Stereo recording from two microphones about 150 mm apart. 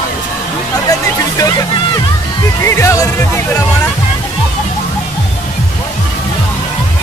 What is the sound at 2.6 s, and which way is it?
Music, 20° left (ahead or behind).